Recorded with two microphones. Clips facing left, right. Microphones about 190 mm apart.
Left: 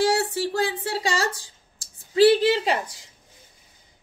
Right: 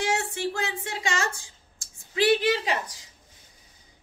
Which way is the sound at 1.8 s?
30° left (ahead or behind).